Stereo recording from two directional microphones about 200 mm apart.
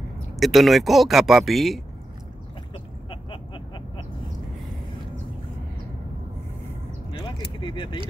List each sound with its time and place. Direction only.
0.4 s speech: centre (ahead or behind)
3.1 s a sound: 25° left (ahead or behind)
7.6 s vehicle: 25° left (ahead or behind)